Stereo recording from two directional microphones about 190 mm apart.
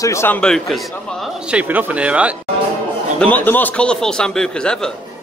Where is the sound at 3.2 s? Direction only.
10° left (ahead or behind).